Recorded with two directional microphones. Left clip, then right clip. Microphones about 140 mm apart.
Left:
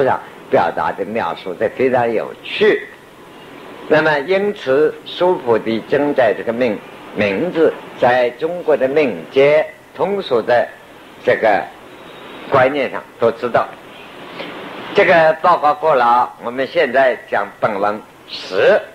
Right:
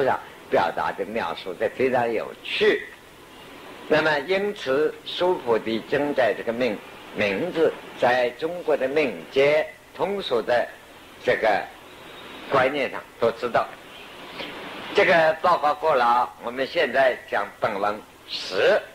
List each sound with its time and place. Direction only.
0.0 s speech: 30° left (ahead or behind)
3.8 s speech: 30° left (ahead or behind)